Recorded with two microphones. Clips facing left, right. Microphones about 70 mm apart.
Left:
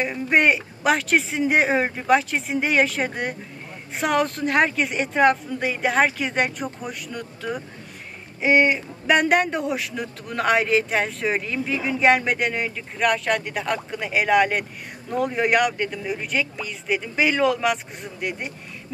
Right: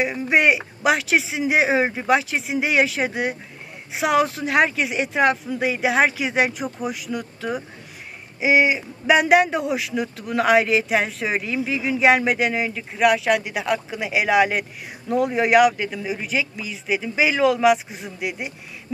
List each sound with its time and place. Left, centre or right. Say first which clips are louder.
0.0 s speech: right 1 dB; centre